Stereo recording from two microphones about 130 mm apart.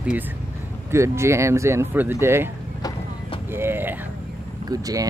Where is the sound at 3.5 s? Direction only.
15° right (ahead or behind).